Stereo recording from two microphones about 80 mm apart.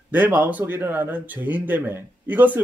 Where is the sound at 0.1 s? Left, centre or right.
Right.